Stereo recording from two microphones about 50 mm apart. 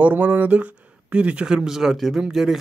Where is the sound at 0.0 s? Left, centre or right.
Right.